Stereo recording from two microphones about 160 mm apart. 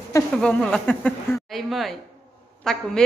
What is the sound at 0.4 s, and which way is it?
A woman's voice, 5° left (ahead or behind).